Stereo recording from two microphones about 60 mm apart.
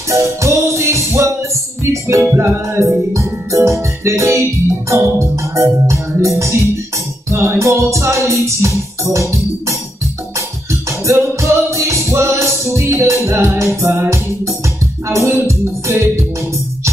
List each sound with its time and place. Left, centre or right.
0.1 s music: right